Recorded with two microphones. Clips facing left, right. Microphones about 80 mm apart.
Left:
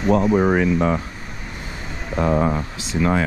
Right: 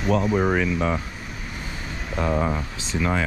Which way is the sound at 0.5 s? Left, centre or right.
Left.